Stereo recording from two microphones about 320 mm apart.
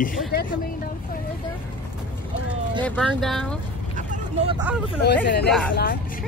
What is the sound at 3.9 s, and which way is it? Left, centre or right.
Vehicle, right.